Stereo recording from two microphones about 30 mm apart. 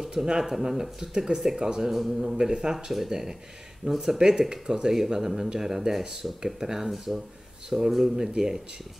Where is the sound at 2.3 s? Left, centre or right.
Right.